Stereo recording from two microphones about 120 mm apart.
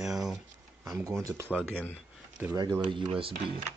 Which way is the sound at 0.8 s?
25° right (ahead or behind).